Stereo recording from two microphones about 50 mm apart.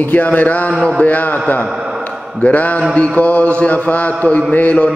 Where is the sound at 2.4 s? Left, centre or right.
Left.